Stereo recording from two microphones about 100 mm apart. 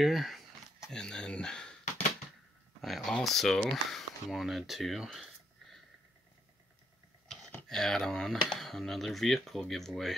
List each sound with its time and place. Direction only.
0.0 s speech: centre (ahead or behind)
2.8 s speech: centre (ahead or behind)
7.6 s speech: 5° left (ahead or behind)